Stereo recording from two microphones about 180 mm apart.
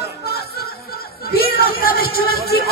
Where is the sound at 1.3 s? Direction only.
55° left (ahead or behind).